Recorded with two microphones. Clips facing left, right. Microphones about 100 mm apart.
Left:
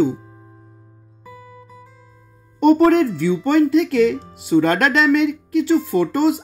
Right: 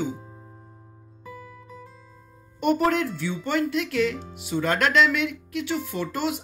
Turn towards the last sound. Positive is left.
turn(degrees=35)  # may be behind; listen again after turning